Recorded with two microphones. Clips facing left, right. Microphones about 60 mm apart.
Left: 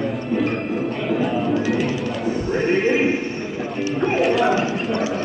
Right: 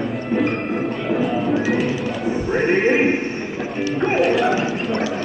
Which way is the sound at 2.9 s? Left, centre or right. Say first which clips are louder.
Right 2 dB; centre.